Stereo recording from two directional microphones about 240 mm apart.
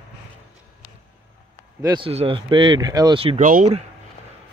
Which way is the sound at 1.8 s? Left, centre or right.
Centre.